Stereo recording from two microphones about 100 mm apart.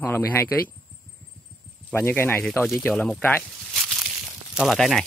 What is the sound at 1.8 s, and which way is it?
A man's voice, 20° left (ahead or behind).